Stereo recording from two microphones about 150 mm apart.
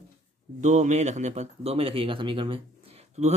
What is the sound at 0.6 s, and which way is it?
Speech, 50° right (ahead or behind).